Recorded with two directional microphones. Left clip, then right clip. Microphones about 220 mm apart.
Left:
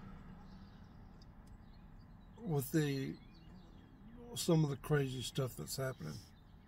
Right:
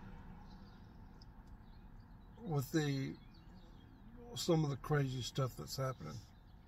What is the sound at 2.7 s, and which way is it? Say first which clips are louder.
Speech: even; 10° left (ahead or behind).